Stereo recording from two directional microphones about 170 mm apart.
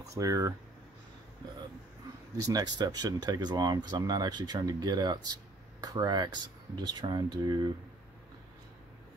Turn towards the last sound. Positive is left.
turn(degrees=-25)  # may be behind; listen again after turning